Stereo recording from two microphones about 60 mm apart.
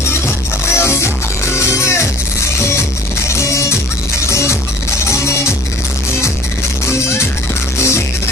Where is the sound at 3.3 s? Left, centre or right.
Left.